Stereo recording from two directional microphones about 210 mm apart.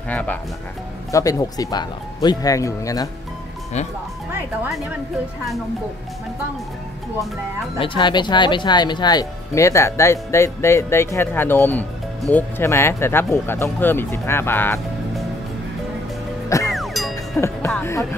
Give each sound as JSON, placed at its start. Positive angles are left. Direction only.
{"t": 0.1, "sound": "speech", "side_deg": 5}
{"t": 4.3, "sound": "speech", "side_deg": 0}
{"t": 7.8, "sound": "speech", "side_deg": 20}
{"t": 16.4, "sound": "music", "side_deg": 15}
{"t": 16.7, "sound": "music", "side_deg": 0}
{"t": 17.4, "sound": "music", "side_deg": 10}